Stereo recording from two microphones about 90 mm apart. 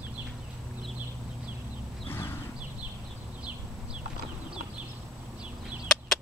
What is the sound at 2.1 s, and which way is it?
Horse, 25° left (ahead or behind).